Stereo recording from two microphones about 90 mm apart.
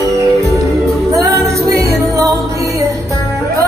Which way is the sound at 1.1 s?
35° right (ahead or behind).